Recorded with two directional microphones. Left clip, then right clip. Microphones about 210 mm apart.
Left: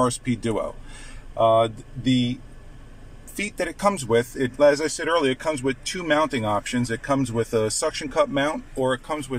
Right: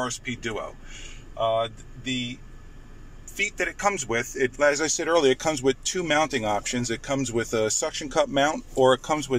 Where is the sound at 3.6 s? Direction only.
25° left (ahead or behind).